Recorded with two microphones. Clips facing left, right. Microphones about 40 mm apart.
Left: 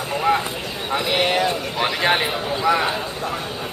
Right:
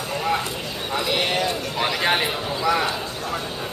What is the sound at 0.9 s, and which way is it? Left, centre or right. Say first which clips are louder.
A man's voice: left 3 dB; centre.